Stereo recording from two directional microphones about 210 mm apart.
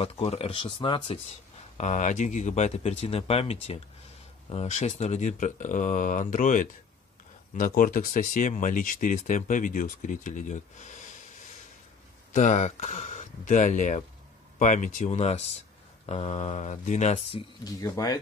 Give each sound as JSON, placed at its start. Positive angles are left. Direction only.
{"t": 0.0, "sound": "speech", "side_deg": 30}
{"t": 1.8, "sound": "speech", "side_deg": 35}
{"t": 12.3, "sound": "speech", "side_deg": 35}